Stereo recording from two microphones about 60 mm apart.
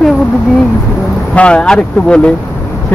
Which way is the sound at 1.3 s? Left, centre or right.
Centre.